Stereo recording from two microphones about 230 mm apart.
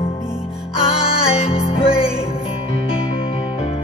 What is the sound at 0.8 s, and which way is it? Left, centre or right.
Music, left.